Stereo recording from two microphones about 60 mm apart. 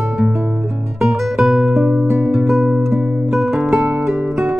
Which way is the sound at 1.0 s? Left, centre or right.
Centre.